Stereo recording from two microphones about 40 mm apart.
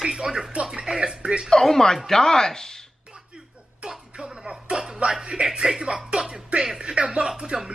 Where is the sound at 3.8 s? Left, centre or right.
Centre.